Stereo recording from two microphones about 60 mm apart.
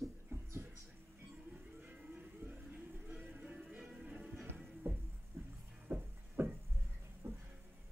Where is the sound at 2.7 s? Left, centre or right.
Right.